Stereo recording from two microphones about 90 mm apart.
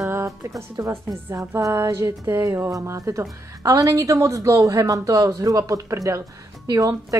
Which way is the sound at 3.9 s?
35° right (ahead or behind).